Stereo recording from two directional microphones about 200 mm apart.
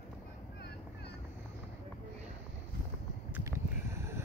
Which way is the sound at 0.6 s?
55° left (ahead or behind).